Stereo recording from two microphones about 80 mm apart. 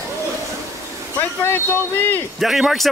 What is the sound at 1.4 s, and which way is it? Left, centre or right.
Speech, left.